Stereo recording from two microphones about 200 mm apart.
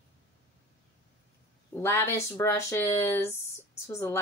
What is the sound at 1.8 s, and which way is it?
A woman's voice, 10° left (ahead or behind).